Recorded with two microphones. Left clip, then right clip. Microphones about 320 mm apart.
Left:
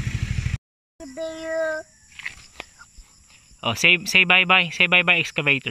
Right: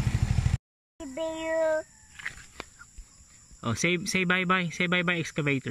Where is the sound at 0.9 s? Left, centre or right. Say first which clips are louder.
Left 1 dB; centre.